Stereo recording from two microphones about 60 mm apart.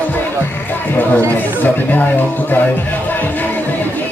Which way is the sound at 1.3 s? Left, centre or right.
Left.